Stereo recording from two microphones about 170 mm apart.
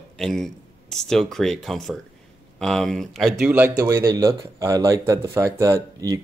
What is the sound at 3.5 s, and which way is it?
Speech, 15° right (ahead or behind).